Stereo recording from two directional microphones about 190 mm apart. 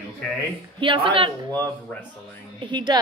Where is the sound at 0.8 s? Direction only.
25° right (ahead or behind).